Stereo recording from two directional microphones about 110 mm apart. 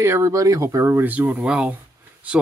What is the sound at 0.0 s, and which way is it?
Speech, 25° right (ahead or behind).